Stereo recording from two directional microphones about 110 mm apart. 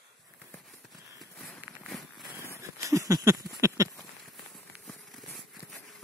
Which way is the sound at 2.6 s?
30° right (ahead or behind).